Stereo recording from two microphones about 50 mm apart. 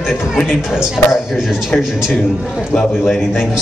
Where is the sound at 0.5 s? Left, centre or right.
Centre.